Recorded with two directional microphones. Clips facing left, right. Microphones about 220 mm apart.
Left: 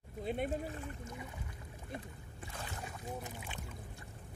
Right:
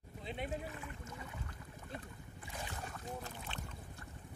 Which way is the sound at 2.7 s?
10° left (ahead or behind).